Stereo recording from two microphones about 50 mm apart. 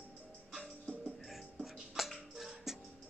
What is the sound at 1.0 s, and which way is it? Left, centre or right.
Music, centre.